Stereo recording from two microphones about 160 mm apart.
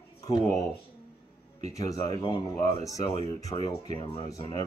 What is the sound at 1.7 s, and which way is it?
Speech, 20° left (ahead or behind).